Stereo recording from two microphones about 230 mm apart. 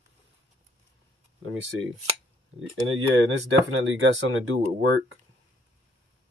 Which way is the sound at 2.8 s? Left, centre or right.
Right.